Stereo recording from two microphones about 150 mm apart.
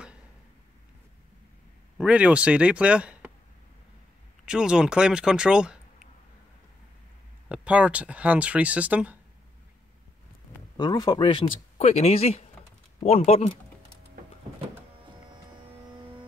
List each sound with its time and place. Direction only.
2.0 s speech: 10° right (ahead or behind)
4.5 s speech: 5° right (ahead or behind)
7.4 s speech: 10° right (ahead or behind)
10.8 s speech: 25° left (ahead or behind)
11.9 s speech: 45° left (ahead or behind)